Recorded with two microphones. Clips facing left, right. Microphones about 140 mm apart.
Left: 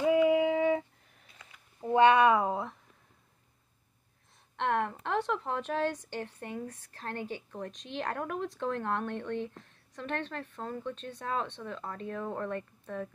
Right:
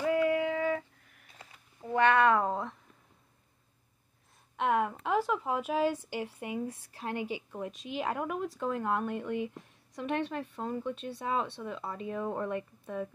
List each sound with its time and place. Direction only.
0.0 s female singing: 20° left (ahead or behind)
1.4 s a sound: 30° right (ahead or behind)
1.9 s speech: 20° left (ahead or behind)
4.6 s a woman's voice: 5° right (ahead or behind)